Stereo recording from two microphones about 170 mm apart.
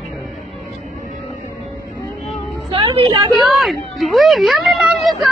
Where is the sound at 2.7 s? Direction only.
35° right (ahead or behind).